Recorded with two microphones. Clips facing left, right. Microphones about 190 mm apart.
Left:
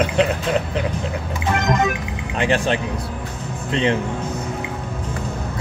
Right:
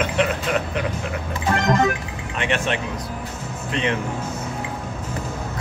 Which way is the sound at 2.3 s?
35° left (ahead or behind).